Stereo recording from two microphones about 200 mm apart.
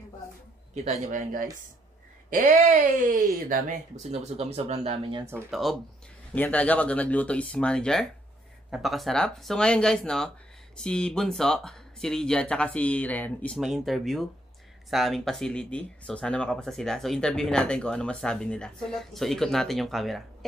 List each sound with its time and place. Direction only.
0.8 s speech: 35° right (ahead or behind)
4.0 s speech: 35° right (ahead or behind)
5.2 s speech: 10° right (ahead or behind)
5.5 s speech: centre (ahead or behind)